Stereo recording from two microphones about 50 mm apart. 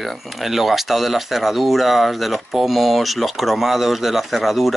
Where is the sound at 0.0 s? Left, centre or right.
Centre.